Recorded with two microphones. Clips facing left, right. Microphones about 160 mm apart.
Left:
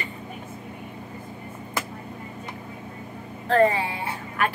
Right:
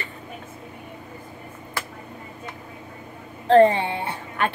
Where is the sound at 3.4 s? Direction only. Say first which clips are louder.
Right 5 dB; 25° right (ahead or behind).